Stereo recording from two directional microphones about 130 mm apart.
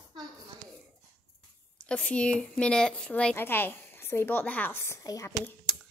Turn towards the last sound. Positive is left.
turn(degrees=5)  # may be behind; listen again after turning